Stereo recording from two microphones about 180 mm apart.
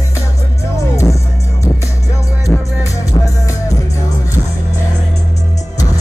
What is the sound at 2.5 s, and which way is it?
Music, 10° left (ahead or behind).